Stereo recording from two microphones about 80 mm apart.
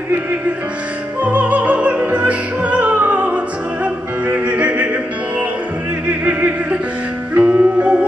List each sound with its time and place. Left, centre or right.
1.2 s opera: centre
3.8 s music: centre
6.0 s opera: centre
7.3 s music: centre